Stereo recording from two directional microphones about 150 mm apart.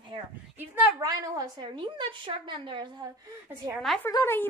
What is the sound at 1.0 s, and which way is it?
A woman's voice, 25° right (ahead or behind).